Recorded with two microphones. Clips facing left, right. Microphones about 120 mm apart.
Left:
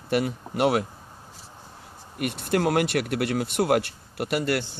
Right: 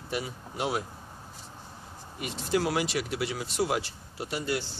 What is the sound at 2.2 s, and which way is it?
Speech, 60° left (ahead or behind).